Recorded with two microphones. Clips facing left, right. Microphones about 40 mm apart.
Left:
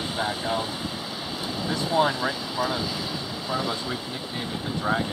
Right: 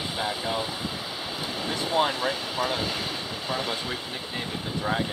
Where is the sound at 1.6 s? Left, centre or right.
Right.